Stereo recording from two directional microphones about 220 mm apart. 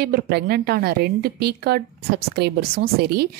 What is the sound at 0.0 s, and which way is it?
A woman's voice, 45° right (ahead or behind).